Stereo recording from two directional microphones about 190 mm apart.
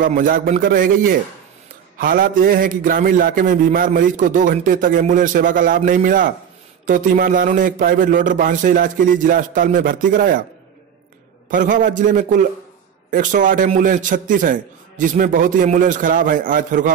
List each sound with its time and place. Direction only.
0.0 s a man's voice: 45° right (ahead or behind)
11.5 s a man's voice: 45° right (ahead or behind)